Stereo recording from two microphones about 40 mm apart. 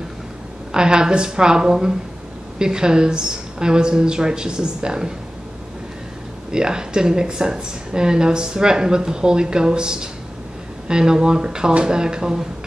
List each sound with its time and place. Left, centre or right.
0.7 s speech: centre
6.5 s speech: centre